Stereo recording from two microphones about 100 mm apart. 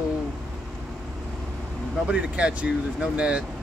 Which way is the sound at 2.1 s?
10° right (ahead or behind).